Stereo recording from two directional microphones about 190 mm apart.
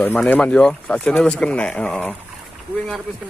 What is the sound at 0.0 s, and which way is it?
Speech, 10° left (ahead or behind).